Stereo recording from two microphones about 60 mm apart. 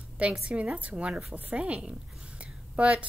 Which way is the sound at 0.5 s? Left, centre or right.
Right.